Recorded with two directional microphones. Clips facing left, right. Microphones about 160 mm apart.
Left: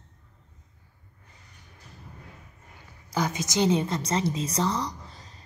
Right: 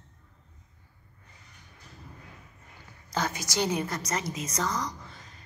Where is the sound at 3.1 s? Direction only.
15° left (ahead or behind); by 5.4 s 35° left (ahead or behind).